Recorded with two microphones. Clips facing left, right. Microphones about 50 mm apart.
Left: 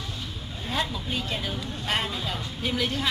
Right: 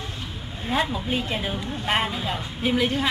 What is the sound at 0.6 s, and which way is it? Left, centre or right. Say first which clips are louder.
Speech: right 5 dB; right.